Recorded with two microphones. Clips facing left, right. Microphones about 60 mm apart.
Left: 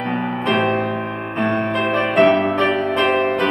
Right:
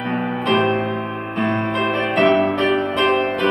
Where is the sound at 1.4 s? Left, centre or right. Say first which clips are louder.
Left 1 dB; centre.